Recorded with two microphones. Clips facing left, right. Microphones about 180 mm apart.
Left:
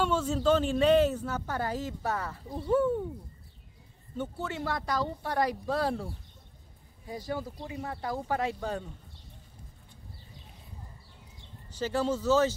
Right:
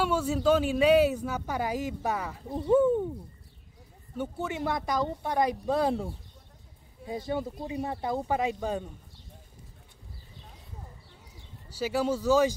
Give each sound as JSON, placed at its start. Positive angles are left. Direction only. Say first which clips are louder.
{"t": 0.0, "sound": "speech", "louder": "right 1 dB", "side_deg": -10}
{"t": 4.2, "sound": "speech", "louder": "right 2 dB", "side_deg": -15}
{"t": 7.1, "sound": "speech", "louder": "right 4 dB", "side_deg": -25}
{"t": 11.7, "sound": "speech", "louder": "right 1 dB", "side_deg": -10}